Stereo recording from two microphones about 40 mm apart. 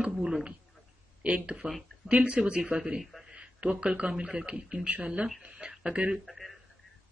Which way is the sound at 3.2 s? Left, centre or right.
Right.